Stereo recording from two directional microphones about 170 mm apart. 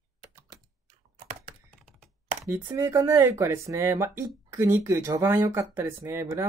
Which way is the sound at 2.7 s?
20° right (ahead or behind).